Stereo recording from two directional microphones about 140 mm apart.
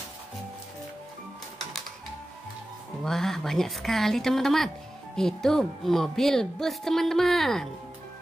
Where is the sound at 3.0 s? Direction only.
5° left (ahead or behind).